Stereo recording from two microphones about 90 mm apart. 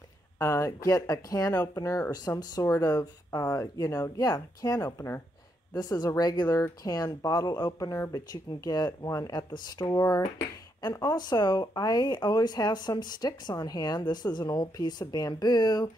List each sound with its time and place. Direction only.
0.4 s speech: 35° left (ahead or behind); by 15.9 s 50° left (ahead or behind)